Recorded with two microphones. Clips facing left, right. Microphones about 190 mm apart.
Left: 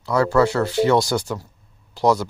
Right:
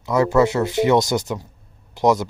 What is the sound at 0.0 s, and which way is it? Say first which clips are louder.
Speech: right 1 dB; 20° right (ahead or behind).